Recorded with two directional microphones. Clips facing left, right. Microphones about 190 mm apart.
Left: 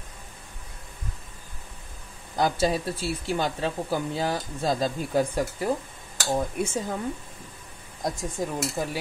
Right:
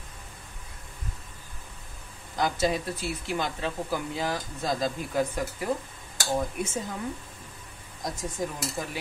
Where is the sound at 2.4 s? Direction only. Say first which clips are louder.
Left 2 dB; 30° left (ahead or behind).